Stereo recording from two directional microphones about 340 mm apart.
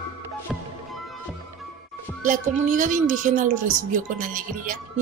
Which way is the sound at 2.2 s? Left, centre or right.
Right.